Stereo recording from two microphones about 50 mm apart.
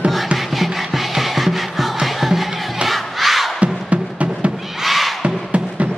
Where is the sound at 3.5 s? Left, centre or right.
Right.